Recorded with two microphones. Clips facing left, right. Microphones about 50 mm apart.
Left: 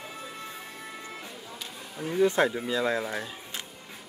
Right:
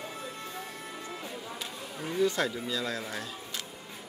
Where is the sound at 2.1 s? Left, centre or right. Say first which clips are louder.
Left 5 dB; left.